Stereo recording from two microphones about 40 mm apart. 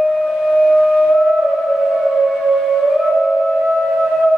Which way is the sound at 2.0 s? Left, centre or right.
Centre.